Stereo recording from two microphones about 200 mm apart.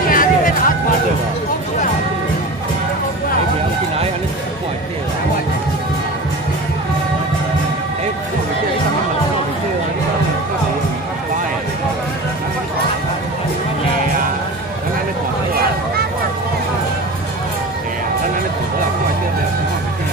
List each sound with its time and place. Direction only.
0.1 s music: 45° left (ahead or behind)